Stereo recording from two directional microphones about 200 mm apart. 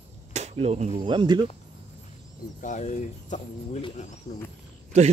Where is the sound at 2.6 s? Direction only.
40° left (ahead or behind).